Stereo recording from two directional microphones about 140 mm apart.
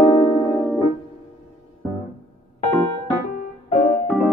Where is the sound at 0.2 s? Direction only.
25° left (ahead or behind).